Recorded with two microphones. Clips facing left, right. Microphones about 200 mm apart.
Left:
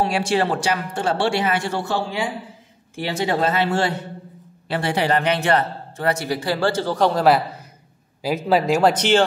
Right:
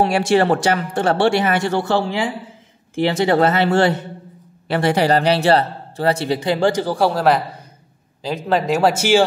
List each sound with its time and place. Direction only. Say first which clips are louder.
0.0 s speech: right 5 dB; 60° right (ahead or behind)
4.9 s speech: right 3 dB; 40° right (ahead or behind); by 7.4 s centre (ahead or behind)
8.5 s speech: even; centre (ahead or behind)